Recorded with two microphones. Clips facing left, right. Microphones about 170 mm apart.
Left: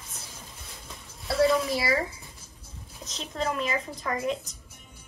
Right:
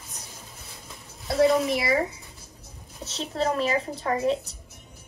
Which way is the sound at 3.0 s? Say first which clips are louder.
Right 4 dB; 35° right (ahead or behind).